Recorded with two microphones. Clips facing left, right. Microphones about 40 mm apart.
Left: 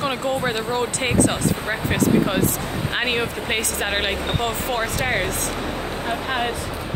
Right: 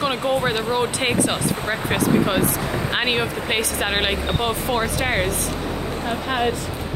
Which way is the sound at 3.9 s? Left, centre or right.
Right.